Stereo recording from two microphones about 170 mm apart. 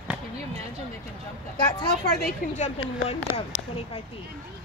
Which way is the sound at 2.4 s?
55° left (ahead or behind).